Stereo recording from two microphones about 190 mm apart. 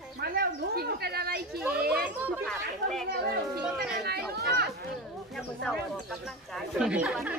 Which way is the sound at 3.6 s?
5° right (ahead or behind).